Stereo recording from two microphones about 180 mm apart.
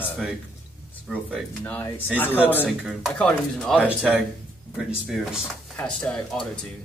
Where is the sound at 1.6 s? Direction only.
10° left (ahead or behind).